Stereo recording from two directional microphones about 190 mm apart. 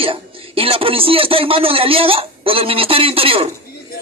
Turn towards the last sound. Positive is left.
turn(degrees=-30)  # may be behind; listen again after turning